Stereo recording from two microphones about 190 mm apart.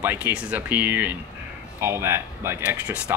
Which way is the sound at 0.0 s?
10° right (ahead or behind).